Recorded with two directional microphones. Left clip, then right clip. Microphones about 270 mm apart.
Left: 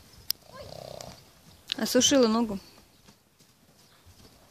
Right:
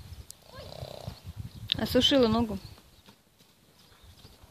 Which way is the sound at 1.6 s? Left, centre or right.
Centre.